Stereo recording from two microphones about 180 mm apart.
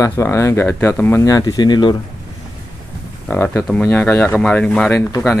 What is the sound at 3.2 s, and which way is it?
Speech, 10° left (ahead or behind).